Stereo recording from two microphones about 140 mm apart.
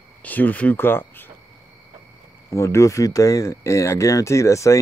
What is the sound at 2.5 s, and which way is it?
Speech, 20° left (ahead or behind).